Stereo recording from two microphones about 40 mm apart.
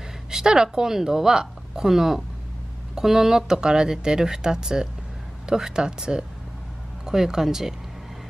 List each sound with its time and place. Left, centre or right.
0.3 s speech: centre